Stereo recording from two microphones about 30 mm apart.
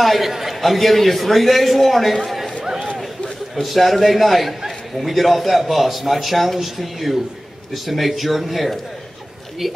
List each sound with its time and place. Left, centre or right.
0.0 s a man's voice: centre
0.3 s a man's voice: centre
0.6 s a man's voice: centre
2.2 s a sound: centre
2.6 s a sound: centre
3.6 s a man's voice: centre